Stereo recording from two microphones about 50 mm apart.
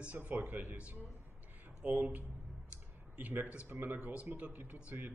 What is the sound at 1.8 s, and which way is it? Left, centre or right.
Speech, right.